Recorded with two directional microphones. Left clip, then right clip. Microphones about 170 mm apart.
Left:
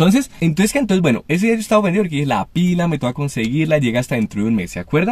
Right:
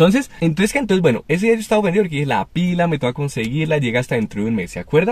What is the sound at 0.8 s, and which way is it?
Speech, centre (ahead or behind).